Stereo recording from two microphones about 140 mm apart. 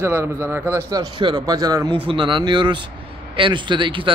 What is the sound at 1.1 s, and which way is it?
A man's voice, 30° right (ahead or behind).